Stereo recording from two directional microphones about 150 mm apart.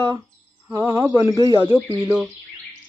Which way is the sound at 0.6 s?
20° right (ahead or behind).